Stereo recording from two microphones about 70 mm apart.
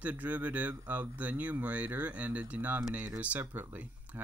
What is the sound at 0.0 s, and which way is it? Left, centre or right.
Speech, right.